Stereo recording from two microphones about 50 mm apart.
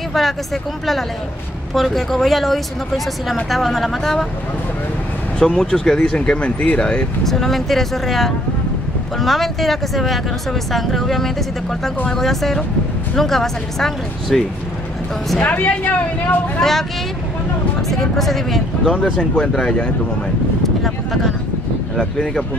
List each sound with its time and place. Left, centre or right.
0.2 s speech: centre
1.7 s speech: centre
5.4 s speech: centre
7.2 s speech: centre
15.4 s speech: left
17.8 s speech: centre
19.3 s speech: centre
20.6 s a sound: centre